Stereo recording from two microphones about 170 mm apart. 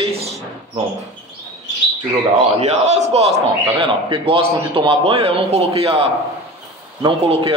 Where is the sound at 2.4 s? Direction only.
40° right (ahead or behind).